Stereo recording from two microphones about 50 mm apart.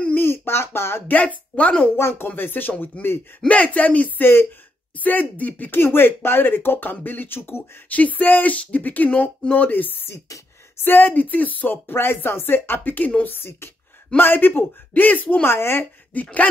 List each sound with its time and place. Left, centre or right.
0.1 s a sound: left
1.0 s speech: left
2.0 s speech: left
2.2 s speech: left
3.3 s speech: left
4.2 s speech: left
4.9 s speech: left
5.8 s speech: left
7.9 s speech: left
10.0 s speech: left
10.8 s speech: left
15.4 s speech: left